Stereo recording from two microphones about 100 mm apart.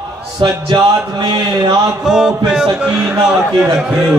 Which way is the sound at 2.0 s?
5° right (ahead or behind).